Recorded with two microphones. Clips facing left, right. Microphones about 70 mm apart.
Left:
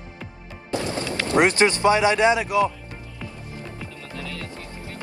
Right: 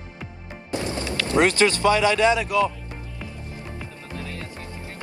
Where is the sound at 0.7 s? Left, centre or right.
Right.